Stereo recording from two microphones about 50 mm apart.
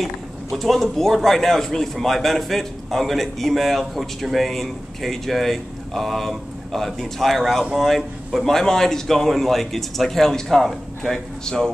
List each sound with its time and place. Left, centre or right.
0.0 s a man's voice: centre